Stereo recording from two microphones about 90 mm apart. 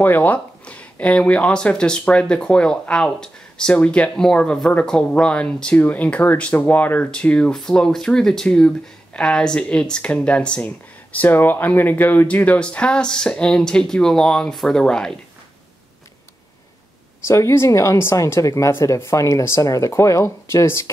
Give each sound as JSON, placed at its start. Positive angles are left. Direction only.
{"t": 0.0, "sound": "speech", "side_deg": 20}
{"t": 17.3, "sound": "speech", "side_deg": 35}